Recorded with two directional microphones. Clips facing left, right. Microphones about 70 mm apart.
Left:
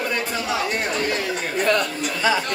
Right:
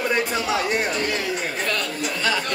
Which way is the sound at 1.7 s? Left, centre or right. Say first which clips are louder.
Left 4 dB; centre.